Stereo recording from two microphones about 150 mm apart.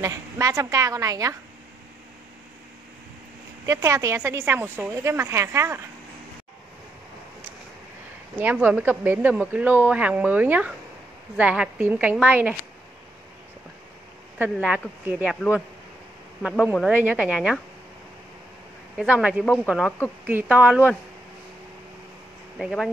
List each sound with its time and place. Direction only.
0.0 s a woman's voice: 20° right (ahead or behind)
3.6 s a woman's voice: 20° right (ahead or behind)
8.4 s speech: 10° right (ahead or behind)
14.4 s speech: 10° right (ahead or behind)
16.4 s speech: 5° right (ahead or behind)
18.9 s speech: 5° right (ahead or behind)
19.4 s speech: 10° left (ahead or behind)
20.2 s speech: 10° right (ahead or behind)
22.6 s speech: centre (ahead or behind)